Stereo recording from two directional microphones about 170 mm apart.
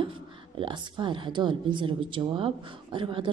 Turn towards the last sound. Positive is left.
turn(degrees=-30)  # may be behind; listen again after turning